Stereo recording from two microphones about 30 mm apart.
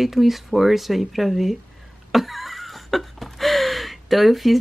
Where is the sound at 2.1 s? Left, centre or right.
Centre.